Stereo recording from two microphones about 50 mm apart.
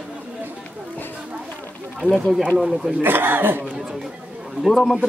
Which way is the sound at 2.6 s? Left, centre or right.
Centre.